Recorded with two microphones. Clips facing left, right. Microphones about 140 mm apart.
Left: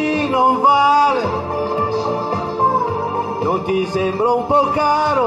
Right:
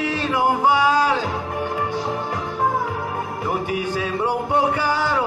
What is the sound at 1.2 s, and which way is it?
Music, 35° left (ahead or behind).